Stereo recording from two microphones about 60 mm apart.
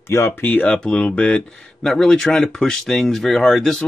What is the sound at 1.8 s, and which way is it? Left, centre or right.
Speech, centre.